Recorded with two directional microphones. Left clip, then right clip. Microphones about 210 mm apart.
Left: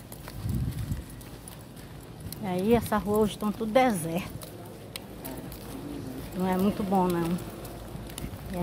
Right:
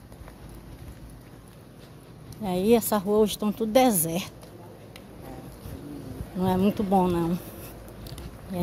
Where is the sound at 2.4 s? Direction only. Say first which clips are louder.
Right 3 dB; 50° right (ahead or behind).